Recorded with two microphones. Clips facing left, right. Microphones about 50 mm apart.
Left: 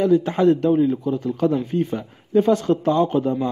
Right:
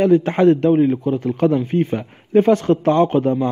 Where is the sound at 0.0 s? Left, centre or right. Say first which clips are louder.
Right 3 dB; right.